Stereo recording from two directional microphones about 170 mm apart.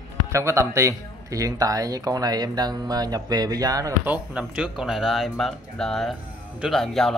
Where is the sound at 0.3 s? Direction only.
15° right (ahead or behind).